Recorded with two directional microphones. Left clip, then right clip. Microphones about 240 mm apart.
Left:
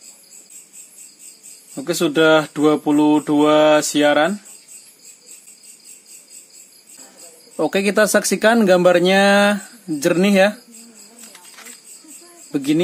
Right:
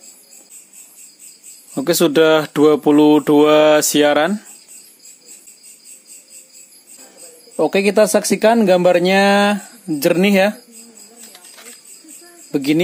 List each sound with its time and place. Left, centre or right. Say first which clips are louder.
1.8 s speech: right 4 dB; right
7.5 s speech: right 3 dB; centre
12.4 s speech: right 2 dB; right